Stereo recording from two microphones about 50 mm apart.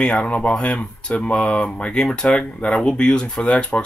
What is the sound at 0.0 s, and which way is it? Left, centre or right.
Speech, left.